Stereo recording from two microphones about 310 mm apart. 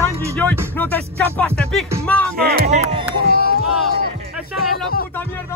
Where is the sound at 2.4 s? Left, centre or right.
Right.